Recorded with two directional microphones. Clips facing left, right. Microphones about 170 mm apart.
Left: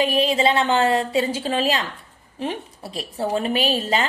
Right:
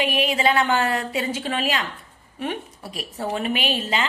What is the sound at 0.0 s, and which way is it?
A woman's voice, 35° left (ahead or behind).